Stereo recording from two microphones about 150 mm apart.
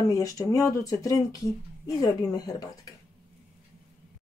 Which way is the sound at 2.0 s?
25° left (ahead or behind).